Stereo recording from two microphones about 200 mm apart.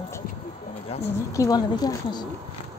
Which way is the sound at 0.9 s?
30° left (ahead or behind).